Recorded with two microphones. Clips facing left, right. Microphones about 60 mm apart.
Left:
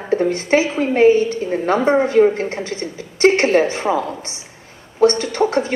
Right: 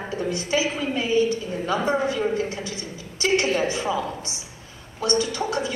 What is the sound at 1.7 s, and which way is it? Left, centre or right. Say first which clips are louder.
A woman's voice: left 10 dB; left.